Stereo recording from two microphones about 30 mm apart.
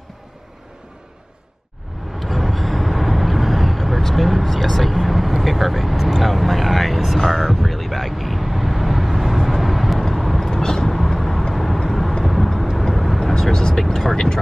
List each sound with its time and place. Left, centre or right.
2.1 s vehicle: centre
7.2 s a sound: centre
7.4 s vehicle: centre
10.5 s vehicle: left; by 13.2 s centre
13.2 s vehicle: centre